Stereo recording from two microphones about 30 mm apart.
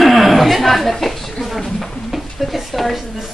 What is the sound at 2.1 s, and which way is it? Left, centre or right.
Speech, centre.